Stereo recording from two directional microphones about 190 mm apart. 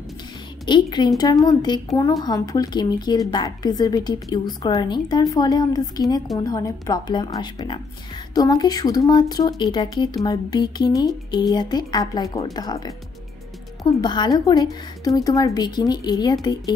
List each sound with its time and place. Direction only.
0.7 s speech: 25° left (ahead or behind)
14.0 s speech: 20° left (ahead or behind)